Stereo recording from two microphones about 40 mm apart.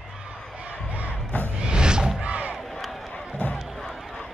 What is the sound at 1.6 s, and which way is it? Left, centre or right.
Music, right.